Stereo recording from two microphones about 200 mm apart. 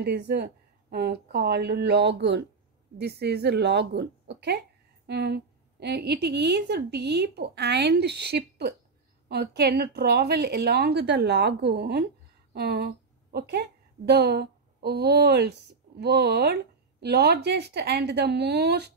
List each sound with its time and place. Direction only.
0.0 s a woman's voice: 55° right (ahead or behind)